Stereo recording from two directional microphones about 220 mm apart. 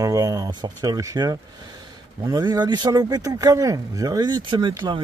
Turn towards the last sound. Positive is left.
turn(degrees=-20)  # may be behind; listen again after turning